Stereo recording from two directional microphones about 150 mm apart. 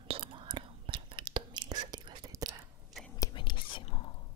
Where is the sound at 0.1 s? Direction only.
35° right (ahead or behind).